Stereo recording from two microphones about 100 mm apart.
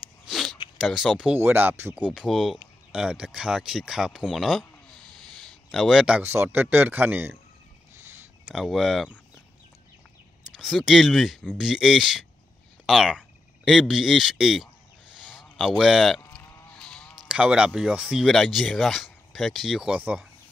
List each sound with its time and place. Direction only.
0.2 s a sound: centre (ahead or behind)
0.7 s speech: 5° right (ahead or behind)
1.3 s speech: 20° right (ahead or behind)
2.0 s speech: 5° right (ahead or behind)
5.7 s speech: 5° right (ahead or behind); by 7.3 s 20° right (ahead or behind)
8.5 s speech: 5° right (ahead or behind)
10.6 s speech: centre (ahead or behind)
15.8 s speech: centre (ahead or behind)
16.7 s a sound: 5° left (ahead or behind)
17.3 s speech: 10° right (ahead or behind)